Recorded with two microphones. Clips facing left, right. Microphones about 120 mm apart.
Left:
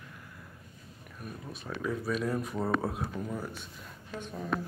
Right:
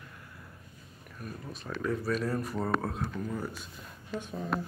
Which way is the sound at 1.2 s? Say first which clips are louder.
Right 1 dB; centre (ahead or behind).